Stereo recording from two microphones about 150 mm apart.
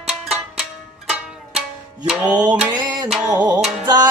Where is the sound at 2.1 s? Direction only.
10° right (ahead or behind).